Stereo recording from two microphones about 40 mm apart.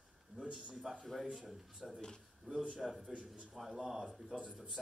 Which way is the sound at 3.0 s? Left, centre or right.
Right.